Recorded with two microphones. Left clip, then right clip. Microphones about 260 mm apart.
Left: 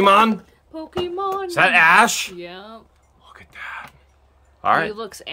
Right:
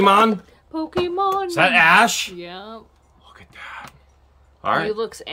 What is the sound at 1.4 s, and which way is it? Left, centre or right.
Speech, centre.